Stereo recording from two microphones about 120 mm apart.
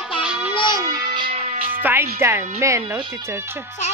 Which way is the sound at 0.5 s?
40° left (ahead or behind).